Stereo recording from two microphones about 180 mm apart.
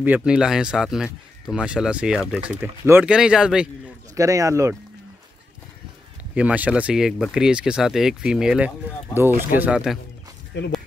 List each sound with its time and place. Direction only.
0.0 s speech: 5° right (ahead or behind)
4.1 s speech: 20° right (ahead or behind)
6.3 s speech: 5° right (ahead or behind)
10.5 s speech: 80° left